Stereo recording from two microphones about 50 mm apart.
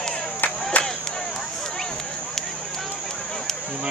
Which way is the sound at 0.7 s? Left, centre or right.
Left.